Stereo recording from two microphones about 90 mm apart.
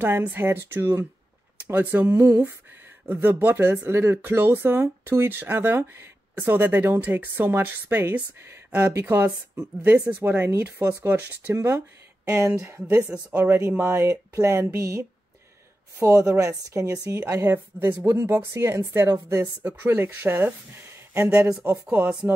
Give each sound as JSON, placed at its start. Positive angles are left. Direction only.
{"t": 0.0, "sound": "a woman's voice", "side_deg": -25}
{"t": 13.1, "sound": "speech", "side_deg": -20}
{"t": 13.6, "sound": "a woman's voice", "side_deg": -30}
{"t": 17.3, "sound": "speech", "side_deg": -25}
{"t": 21.2, "sound": "speech", "side_deg": -15}